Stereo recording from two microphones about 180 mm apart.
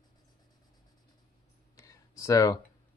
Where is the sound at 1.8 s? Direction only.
20° left (ahead or behind).